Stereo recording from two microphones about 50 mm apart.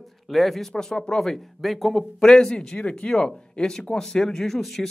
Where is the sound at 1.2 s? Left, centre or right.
Centre.